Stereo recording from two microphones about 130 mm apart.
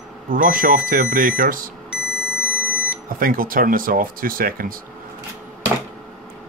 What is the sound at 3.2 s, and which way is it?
Speech, 90° right.